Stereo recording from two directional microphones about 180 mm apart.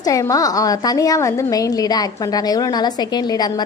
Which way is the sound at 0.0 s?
20° left (ahead or behind).